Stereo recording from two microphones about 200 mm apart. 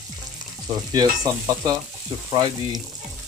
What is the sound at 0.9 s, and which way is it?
Sizzle, 20° right (ahead or behind).